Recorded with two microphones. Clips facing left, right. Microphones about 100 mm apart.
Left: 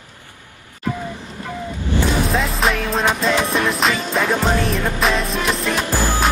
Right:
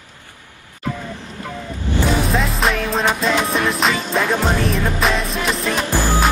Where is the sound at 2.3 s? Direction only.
Centre (ahead or behind).